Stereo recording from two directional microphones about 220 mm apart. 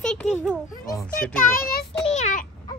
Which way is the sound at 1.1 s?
40° left (ahead or behind).